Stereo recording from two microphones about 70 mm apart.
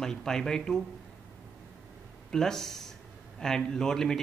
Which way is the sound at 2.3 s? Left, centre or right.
Centre.